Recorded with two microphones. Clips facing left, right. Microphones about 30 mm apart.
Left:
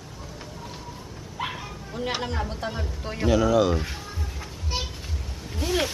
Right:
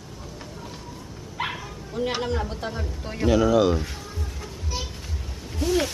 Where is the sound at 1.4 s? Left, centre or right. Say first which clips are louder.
Right 2 dB; right.